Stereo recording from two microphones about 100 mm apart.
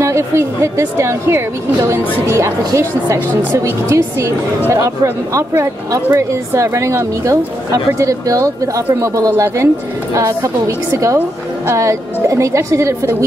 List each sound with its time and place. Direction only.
0.0 s a woman's voice: 30° right (ahead or behind)